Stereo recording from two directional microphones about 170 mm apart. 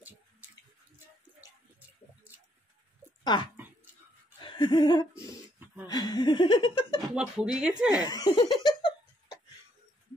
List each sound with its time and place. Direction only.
3.3 s speech: 25° left (ahead or behind)
4.4 s laughter: 25° left (ahead or behind)
5.9 s speech: 25° left (ahead or behind)
7.2 s speech: 5° right (ahead or behind)
8.0 s laughter: 25° left (ahead or behind)